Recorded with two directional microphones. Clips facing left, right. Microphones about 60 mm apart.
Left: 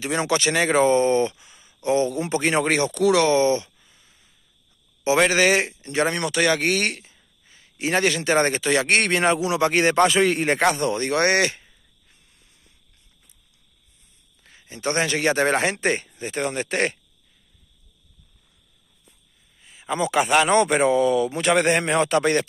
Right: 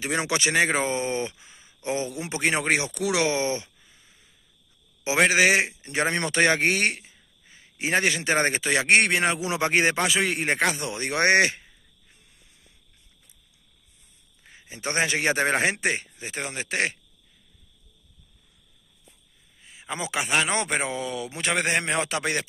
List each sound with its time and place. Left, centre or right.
0.0 s speech: right
1.4 s speech: right
5.0 s a man's voice: centre
9.9 s speech: centre
11.1 s speech: right
14.4 s a man's voice: centre
15.3 s speech: centre
15.8 s speech: centre
19.6 s speech: centre